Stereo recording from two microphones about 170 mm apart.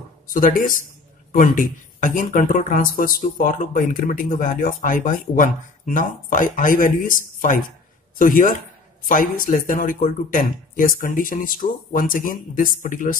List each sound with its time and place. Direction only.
0.3 s speech: 55° left (ahead or behind)